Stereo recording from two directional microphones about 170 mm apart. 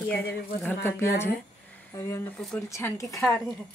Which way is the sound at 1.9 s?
15° left (ahead or behind).